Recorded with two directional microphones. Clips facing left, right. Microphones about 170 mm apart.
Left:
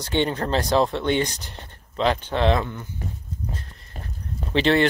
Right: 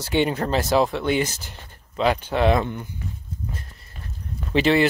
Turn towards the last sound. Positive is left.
turn(degrees=-5)  # may be behind; listen again after turning